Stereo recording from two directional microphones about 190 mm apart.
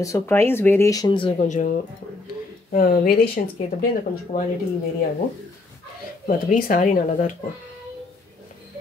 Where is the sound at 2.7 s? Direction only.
50° left (ahead or behind).